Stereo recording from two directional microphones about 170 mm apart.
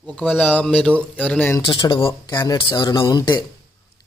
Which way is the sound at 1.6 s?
30° left (ahead or behind).